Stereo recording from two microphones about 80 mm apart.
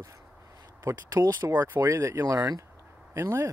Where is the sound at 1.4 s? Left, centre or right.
Right.